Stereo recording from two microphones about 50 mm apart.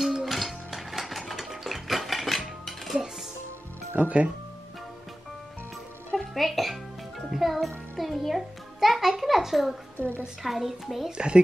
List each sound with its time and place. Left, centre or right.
0.0 s dishes: centre
3.9 s speech: right
6.1 s music: centre
9.9 s a woman's voice: left
10.4 s a woman's voice: centre
11.1 s speech: centre